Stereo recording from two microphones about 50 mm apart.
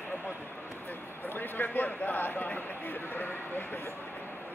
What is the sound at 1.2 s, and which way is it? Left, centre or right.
Speech, left.